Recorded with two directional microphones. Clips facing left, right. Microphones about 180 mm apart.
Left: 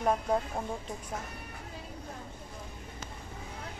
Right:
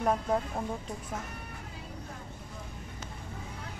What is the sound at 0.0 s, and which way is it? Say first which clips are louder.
Speech: even; 5° left (ahead or behind).